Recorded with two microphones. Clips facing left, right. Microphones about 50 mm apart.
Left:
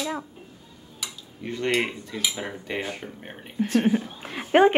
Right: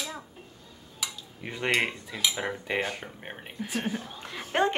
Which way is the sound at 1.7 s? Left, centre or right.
Centre.